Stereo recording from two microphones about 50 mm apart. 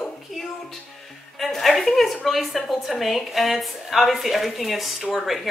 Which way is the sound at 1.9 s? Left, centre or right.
Centre.